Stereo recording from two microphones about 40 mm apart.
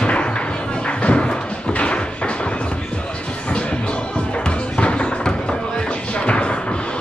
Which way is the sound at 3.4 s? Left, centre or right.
Left.